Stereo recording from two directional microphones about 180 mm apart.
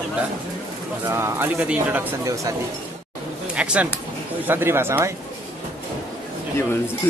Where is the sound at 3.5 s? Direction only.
5° right (ahead or behind).